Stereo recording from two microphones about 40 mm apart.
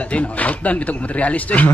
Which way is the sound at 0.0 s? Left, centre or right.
Left.